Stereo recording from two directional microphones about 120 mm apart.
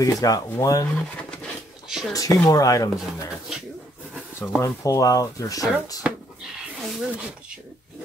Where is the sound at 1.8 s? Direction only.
5° right (ahead or behind).